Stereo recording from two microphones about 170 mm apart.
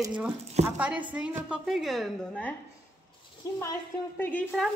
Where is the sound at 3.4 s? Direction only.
20° left (ahead or behind).